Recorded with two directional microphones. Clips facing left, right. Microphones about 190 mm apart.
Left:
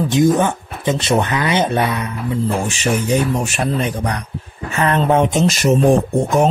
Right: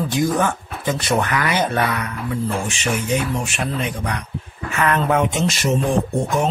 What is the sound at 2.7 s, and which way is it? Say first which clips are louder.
Speech: left 4 dB; 35° left (ahead or behind).